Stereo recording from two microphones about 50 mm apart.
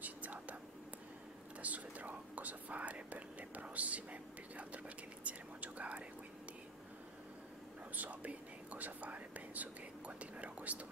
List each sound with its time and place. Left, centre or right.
0.0 s whispering: right
1.6 s whispering: right
7.9 s whispering: right